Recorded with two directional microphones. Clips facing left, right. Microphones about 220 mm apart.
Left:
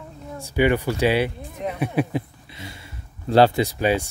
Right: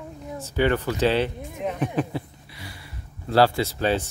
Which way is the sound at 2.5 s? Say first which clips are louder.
Left 1 dB; 25° left (ahead or behind).